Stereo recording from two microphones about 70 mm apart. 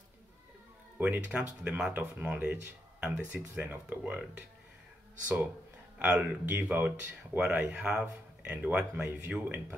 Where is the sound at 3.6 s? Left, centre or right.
Right.